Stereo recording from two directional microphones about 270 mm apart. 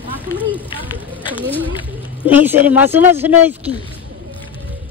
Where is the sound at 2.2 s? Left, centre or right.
Centre.